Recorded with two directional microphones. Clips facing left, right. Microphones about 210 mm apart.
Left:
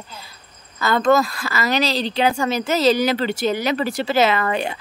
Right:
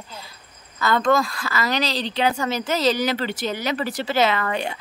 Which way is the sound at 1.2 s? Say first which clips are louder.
Left 2 dB; 10° left (ahead or behind).